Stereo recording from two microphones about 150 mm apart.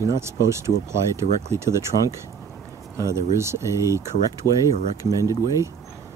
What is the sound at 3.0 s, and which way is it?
Speech, 20° right (ahead or behind).